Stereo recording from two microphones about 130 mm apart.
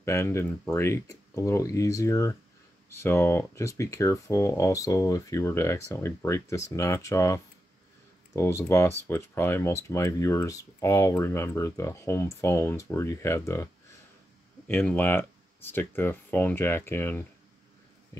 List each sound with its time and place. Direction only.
0.0 s speech: 20° left (ahead or behind)
14.7 s speech: 15° left (ahead or behind)